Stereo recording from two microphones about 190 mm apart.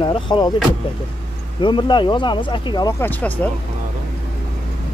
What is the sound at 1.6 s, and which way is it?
Speech, 25° left (ahead or behind).